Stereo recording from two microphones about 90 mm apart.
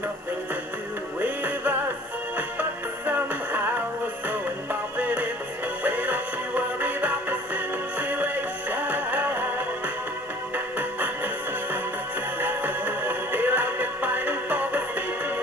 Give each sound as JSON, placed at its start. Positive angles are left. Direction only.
{"t": 1.2, "sound": "music", "side_deg": -20}
{"t": 4.9, "sound": "music", "side_deg": -15}
{"t": 10.5, "sound": "music", "side_deg": -20}
{"t": 12.4, "sound": "music", "side_deg": -20}